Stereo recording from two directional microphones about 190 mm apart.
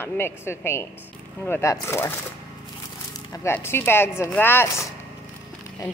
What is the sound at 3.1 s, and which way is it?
Speech, 15° left (ahead or behind).